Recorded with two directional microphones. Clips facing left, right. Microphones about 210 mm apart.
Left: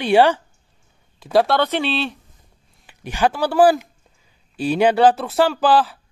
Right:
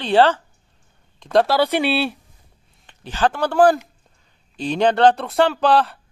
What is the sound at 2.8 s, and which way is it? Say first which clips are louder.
A man's voice: left 1 dB; 10° left (ahead or behind).